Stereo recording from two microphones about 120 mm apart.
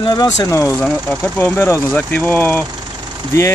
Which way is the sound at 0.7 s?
10° left (ahead or behind).